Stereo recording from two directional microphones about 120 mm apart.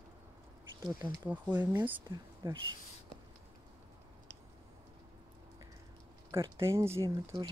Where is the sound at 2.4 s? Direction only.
40° right (ahead or behind).